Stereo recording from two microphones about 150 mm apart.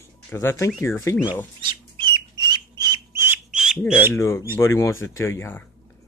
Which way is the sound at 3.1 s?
10° right (ahead or behind).